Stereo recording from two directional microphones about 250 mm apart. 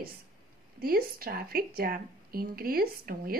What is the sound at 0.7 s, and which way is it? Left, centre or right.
A woman's voice, right.